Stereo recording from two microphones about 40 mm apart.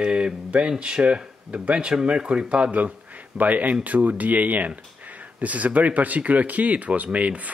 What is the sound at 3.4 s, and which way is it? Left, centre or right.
Speech, right.